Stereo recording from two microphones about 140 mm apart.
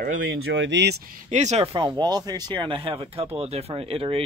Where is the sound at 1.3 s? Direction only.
55° right (ahead or behind).